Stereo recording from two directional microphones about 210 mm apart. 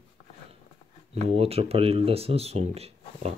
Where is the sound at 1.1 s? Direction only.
30° right (ahead or behind).